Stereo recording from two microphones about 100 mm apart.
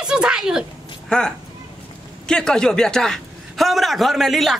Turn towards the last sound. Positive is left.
turn(degrees=0)  # may be behind; listen again after turning